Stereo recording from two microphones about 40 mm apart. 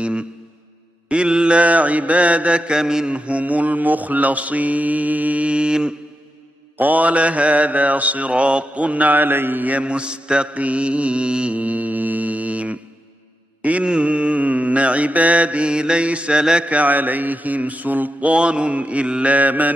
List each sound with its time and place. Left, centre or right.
0.0 s a sound: right
1.0 s mantra: right
2.8 s mantra: centre
3.1 s mantra: right
6.8 s mantra: right
9.8 s mantra: right
16.3 s mantra: centre
16.6 s mantra: right
18.2 s mantra: right
19.3 s mantra: right